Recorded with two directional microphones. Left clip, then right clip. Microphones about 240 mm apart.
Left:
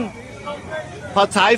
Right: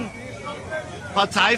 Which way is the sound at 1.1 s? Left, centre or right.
Centre.